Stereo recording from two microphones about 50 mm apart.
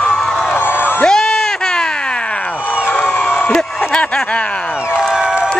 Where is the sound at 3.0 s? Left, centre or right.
Left.